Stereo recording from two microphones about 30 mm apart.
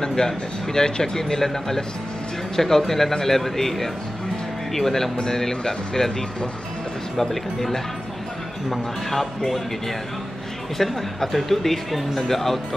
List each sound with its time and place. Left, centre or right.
0.0 s a woman's voice: centre
5.1 s a woman's voice: left
7.2 s a woman's voice: centre
9.1 s a woman's voice: centre
10.8 s a woman's voice: centre